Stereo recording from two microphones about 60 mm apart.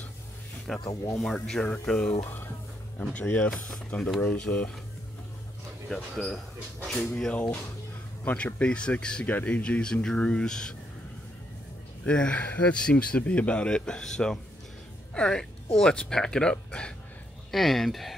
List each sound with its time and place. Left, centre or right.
0.7 s speech: centre
2.2 s speech: left
3.0 s speech: left
3.6 s speech: centre
4.3 s speech: left
6.9 s speech: centre
7.3 s speech: left
12.0 s speech: centre
17.5 s speech: centre